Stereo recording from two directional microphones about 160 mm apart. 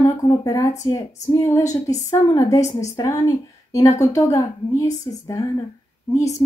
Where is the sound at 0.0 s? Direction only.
20° left (ahead or behind).